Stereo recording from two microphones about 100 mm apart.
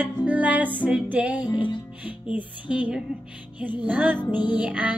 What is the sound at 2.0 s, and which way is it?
Music, 15° right (ahead or behind).